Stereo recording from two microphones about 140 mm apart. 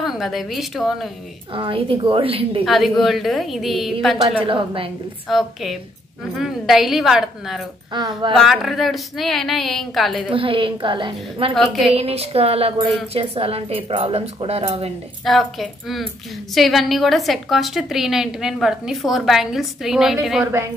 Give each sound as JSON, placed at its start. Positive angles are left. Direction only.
{"t": 0.0, "sound": "a woman's voice", "side_deg": 0}
{"t": 1.5, "sound": "a woman's voice", "side_deg": -40}
{"t": 2.6, "sound": "a woman's voice", "side_deg": 0}
{"t": 4.5, "sound": "a woman's voice", "side_deg": -40}
{"t": 5.3, "sound": "a woman's voice", "side_deg": 0}
{"t": 7.9, "sound": "a woman's voice", "side_deg": -30}
{"t": 8.3, "sound": "a woman's voice", "side_deg": 0}
{"t": 10.3, "sound": "a woman's voice", "side_deg": -40}
{"t": 11.5, "sound": "a woman's voice", "side_deg": 0}
{"t": 11.9, "sound": "speech", "side_deg": -45}
{"t": 15.2, "sound": "a woman's voice", "side_deg": 0}